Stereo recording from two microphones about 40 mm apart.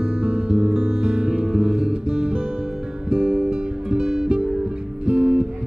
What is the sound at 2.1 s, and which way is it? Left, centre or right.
Music, centre.